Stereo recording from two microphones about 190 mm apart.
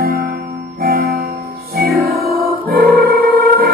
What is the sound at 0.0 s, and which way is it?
Music, 55° right (ahead or behind).